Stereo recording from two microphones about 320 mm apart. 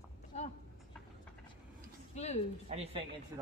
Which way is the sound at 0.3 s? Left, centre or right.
Left.